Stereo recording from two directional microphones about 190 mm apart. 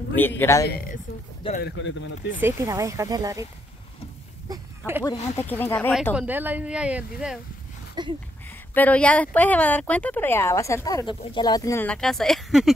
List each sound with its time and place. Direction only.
0.4 s speech: 15° left (ahead or behind)
1.6 s speech: 75° left (ahead or behind)
2.3 s speech: 15° right (ahead or behind)
4.5 s a sound: 10° right (ahead or behind)
5.4 s speech: 10° left (ahead or behind)
6.1 s speech: 10° right (ahead or behind)
8.0 s speech: 20° right (ahead or behind)
8.7 s speech: 10° left (ahead or behind)